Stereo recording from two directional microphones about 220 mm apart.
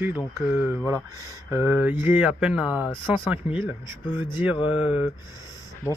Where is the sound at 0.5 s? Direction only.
10° right (ahead or behind).